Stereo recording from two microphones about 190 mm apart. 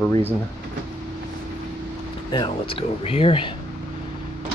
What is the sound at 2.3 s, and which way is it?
Speech, 25° left (ahead or behind).